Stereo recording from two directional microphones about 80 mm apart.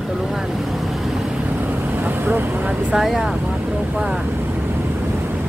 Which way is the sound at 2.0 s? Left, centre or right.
Right.